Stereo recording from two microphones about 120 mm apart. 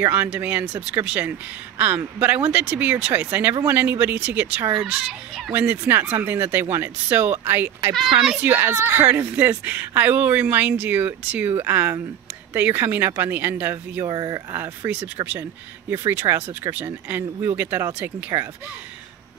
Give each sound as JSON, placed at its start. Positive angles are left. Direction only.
{"t": 0.0, "sound": "speech", "side_deg": -15}
{"t": 5.5, "sound": "speech", "side_deg": -15}
{"t": 14.0, "sound": "speech", "side_deg": -30}
{"t": 15.9, "sound": "speech", "side_deg": -20}
{"t": 18.3, "sound": "speech", "side_deg": -30}